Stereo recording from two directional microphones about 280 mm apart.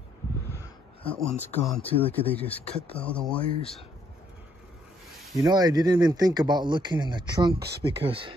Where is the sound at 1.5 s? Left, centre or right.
Centre.